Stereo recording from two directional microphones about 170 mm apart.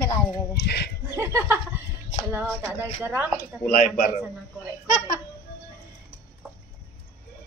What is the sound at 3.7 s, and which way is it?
Speech, 50° left (ahead or behind).